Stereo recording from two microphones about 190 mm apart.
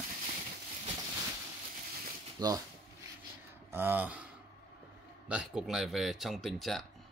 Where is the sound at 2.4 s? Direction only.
20° right (ahead or behind).